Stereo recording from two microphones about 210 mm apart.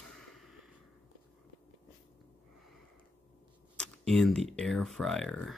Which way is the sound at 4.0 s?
Centre (ahead or behind).